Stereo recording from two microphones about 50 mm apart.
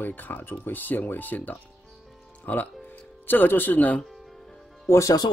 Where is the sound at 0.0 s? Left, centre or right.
Left.